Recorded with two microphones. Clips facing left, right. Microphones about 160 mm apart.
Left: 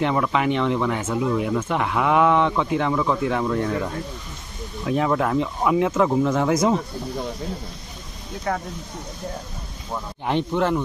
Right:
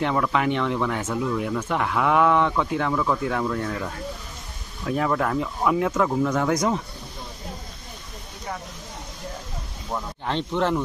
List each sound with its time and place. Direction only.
0.0 s speech: 10° left (ahead or behind)
8.5 s speech: 80° left
10.2 s speech: 15° left (ahead or behind)